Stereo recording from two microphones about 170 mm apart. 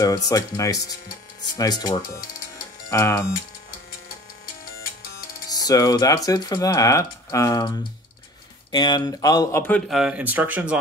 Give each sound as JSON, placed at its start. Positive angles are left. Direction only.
{"t": 0.0, "sound": "speech", "side_deg": 20}
{"t": 5.5, "sound": "speech", "side_deg": 20}